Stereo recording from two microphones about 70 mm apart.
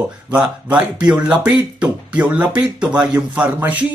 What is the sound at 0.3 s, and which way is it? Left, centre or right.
Speech, centre.